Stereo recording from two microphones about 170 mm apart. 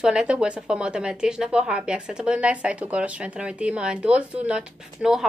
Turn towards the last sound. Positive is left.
turn(degrees=-5)  # may be behind; listen again after turning